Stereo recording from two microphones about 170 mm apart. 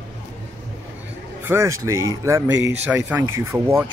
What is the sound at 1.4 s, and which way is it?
Speech, 15° right (ahead or behind).